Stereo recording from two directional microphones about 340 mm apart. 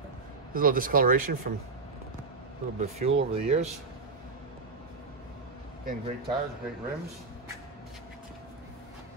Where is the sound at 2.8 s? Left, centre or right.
Centre.